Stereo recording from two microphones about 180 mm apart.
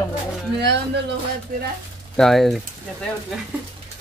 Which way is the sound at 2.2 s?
Centre (ahead or behind).